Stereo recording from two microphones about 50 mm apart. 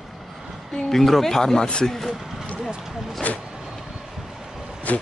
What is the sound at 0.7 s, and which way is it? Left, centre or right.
Speech, centre.